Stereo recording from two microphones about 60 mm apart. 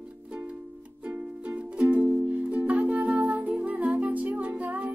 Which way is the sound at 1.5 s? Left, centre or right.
Right.